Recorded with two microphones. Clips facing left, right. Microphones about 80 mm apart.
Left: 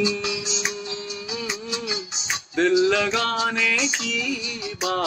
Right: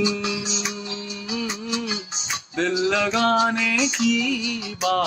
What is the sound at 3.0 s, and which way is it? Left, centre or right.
Music, right.